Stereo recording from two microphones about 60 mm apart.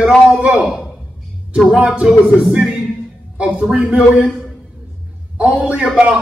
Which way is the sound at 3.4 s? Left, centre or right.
Right.